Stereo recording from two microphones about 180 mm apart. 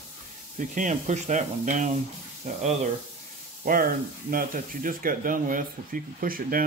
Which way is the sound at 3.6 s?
50° right (ahead or behind).